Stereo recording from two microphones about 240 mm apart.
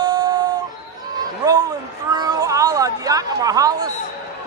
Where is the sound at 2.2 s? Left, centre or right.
Centre.